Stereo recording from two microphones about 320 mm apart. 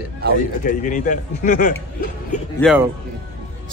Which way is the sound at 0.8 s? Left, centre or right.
Left.